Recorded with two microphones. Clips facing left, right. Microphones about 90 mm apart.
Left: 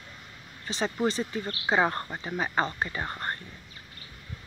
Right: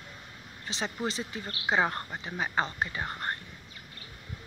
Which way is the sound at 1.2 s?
5° right (ahead or behind).